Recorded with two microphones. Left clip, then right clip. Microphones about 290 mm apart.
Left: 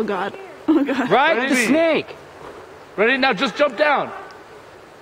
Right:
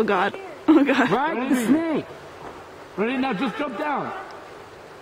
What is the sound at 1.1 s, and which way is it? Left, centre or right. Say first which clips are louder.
Speech: left 7 dB; centre.